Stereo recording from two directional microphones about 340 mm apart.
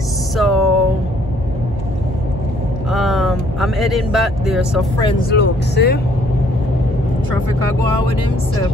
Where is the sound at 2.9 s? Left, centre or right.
Centre.